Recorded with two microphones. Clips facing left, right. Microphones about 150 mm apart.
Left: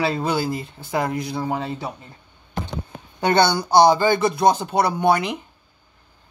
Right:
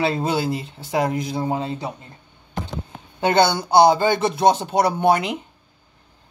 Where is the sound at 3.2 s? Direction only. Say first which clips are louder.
Even; 20° right (ahead or behind).